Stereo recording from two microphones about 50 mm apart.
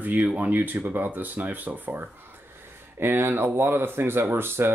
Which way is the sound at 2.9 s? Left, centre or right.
Right.